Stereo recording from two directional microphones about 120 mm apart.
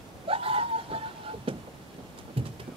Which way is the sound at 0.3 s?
50° right (ahead or behind).